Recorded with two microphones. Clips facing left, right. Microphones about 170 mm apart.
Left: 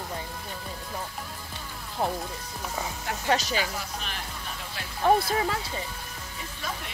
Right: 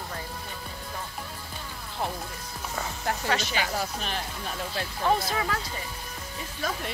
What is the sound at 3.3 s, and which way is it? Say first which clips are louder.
Speech: left 5 dB; 40° left (ahead or behind).